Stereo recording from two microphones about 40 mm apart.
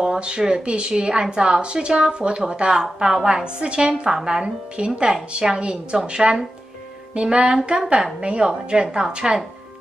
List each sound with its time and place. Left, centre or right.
0.0 s a woman's voice: right